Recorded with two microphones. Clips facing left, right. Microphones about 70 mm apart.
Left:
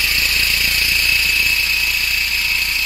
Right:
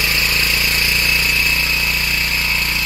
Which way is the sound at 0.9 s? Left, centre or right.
Right.